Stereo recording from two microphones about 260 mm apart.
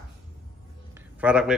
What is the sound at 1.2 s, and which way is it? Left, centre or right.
Speech, centre.